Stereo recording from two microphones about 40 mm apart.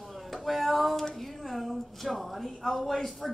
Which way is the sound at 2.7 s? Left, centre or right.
Centre.